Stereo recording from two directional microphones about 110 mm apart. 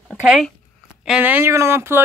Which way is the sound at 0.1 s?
Centre (ahead or behind).